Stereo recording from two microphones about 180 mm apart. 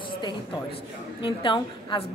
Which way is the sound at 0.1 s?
25° left (ahead or behind).